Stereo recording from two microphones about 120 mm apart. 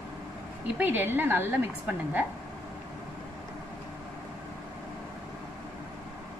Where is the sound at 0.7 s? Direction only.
15° right (ahead or behind).